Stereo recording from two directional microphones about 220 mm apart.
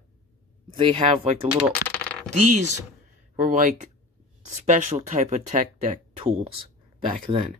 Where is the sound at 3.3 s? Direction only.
35° right (ahead or behind).